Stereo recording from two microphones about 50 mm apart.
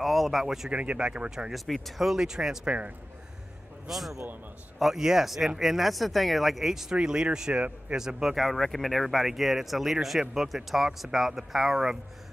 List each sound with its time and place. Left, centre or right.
0.0 s speech: centre
0.7 s speech: right
1.5 s speech: centre
3.8 s speech: centre
8.4 s speech: centre